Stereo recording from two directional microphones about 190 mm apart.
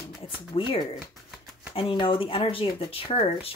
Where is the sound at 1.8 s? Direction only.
25° left (ahead or behind).